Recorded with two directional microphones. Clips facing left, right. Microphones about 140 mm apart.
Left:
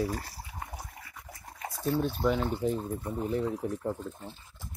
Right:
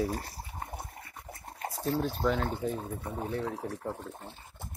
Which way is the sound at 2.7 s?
60° right (ahead or behind).